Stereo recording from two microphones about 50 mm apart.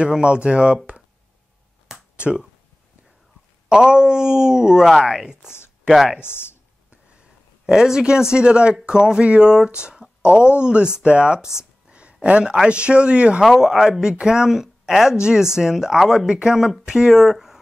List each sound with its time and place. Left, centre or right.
0.0 s speech: centre
2.1 s speech: right
3.6 s speech: centre
6.2 s speech: left
7.6 s speech: centre
11.9 s a sound: right
12.6 s speech: right
13.4 s speech: centre
15.1 s speech: centre
16.3 s speech: centre